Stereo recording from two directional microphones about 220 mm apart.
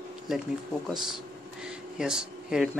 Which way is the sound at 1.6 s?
5° right (ahead or behind).